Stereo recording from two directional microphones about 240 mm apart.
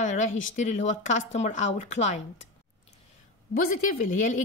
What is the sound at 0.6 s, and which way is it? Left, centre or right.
Speech, left.